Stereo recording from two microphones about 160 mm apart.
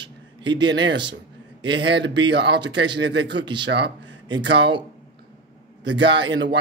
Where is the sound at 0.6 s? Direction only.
90° right.